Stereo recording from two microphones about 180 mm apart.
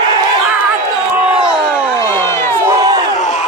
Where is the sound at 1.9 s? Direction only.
15° left (ahead or behind).